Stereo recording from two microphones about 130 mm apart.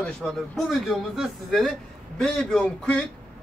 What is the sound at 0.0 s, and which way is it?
A man's voice, centre (ahead or behind).